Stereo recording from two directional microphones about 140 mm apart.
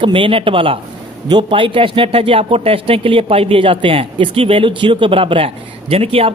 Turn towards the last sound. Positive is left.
turn(degrees=-45)  # may be behind; listen again after turning